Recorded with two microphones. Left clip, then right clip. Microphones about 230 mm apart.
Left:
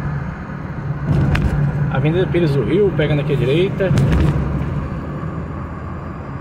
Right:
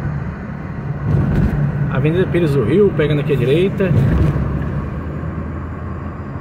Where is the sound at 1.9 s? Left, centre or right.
Right.